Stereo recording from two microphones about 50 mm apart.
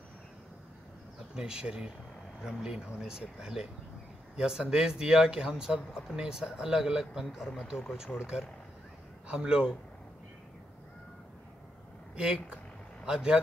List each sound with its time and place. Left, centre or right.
1.3 s speech: centre
12.2 s speech: right